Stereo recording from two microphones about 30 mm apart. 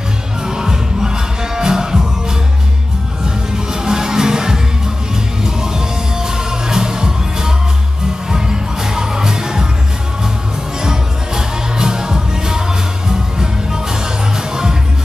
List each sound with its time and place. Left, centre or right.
0.4 s music: right
10.8 s music: right
14.5 s music: centre